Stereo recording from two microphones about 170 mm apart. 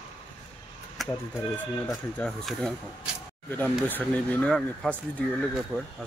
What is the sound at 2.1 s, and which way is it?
Speech, 5° left (ahead or behind).